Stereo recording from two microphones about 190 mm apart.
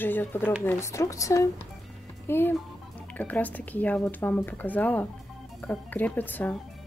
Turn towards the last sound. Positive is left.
turn(degrees=10)  # may be behind; listen again after turning